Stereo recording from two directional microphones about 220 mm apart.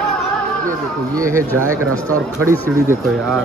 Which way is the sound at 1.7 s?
80° right.